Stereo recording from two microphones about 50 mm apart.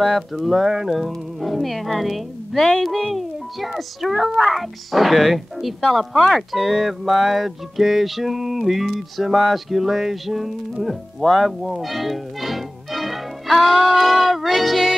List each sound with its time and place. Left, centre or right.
0.0 s speech: centre